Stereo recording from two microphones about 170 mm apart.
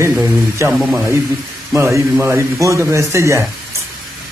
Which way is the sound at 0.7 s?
10° right (ahead or behind).